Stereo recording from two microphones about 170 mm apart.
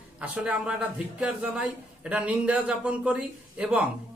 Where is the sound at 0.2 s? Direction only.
5° right (ahead or behind).